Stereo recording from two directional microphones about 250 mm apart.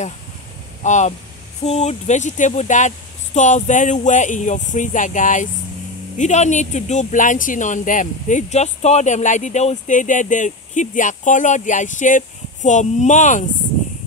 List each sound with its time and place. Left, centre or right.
0.8 s speech: left